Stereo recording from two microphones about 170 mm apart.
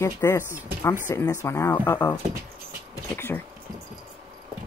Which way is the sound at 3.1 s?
10° left (ahead or behind).